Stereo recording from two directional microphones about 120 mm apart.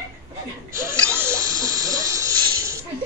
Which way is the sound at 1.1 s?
20° right (ahead or behind).